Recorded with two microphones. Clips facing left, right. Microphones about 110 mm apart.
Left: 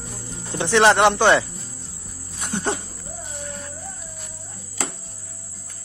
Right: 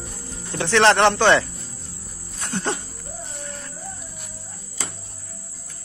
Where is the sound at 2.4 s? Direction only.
15° left (ahead or behind).